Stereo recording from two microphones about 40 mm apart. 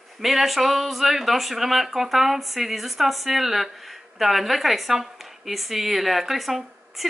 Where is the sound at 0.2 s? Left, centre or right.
Centre.